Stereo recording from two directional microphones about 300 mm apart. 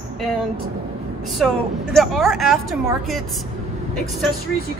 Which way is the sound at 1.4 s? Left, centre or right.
Centre.